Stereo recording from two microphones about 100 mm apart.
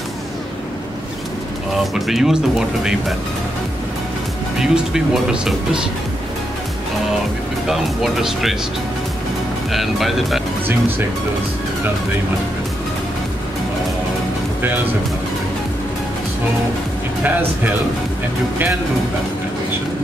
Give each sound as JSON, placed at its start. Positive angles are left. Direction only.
{"t": 1.7, "sound": "speech", "side_deg": 0}
{"t": 4.6, "sound": "speech", "side_deg": -5}
{"t": 7.6, "sound": "speech", "side_deg": -5}
{"t": 9.7, "sound": "speech", "side_deg": 0}
{"t": 17.2, "sound": "speech", "side_deg": -20}